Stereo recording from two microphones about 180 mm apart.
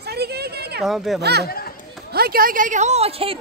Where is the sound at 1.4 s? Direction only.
55° left (ahead or behind).